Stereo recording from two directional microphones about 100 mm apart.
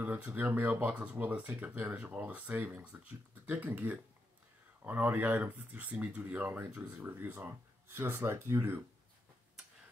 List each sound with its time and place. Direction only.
0.0 s speech: 15° right (ahead or behind)